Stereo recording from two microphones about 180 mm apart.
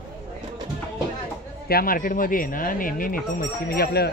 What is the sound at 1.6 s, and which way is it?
Speech, 55° left (ahead or behind).